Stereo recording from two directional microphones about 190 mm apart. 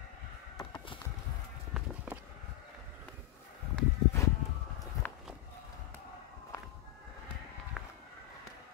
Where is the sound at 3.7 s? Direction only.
15° left (ahead or behind).